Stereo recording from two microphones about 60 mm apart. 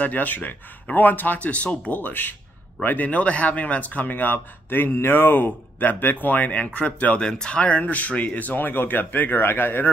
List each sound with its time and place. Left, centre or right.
0.0 s speech: left